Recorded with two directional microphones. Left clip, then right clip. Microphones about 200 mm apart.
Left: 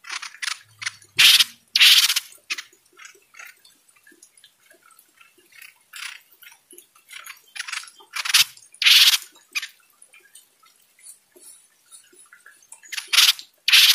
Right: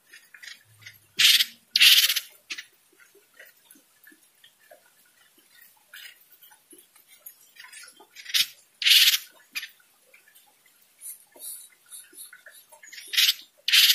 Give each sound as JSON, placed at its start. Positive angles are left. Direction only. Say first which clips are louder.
{"t": 0.5, "sound": "mechanisms", "louder": "left 15 dB", "side_deg": 25}
{"t": 8.1, "sound": "a sound", "louder": "left 7 dB", "side_deg": 25}
{"t": 13.1, "sound": "sanding", "louder": "left 6 dB", "side_deg": 25}